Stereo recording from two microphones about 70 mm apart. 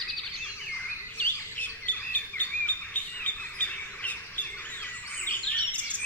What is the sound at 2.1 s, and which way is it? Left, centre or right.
Chirp, left.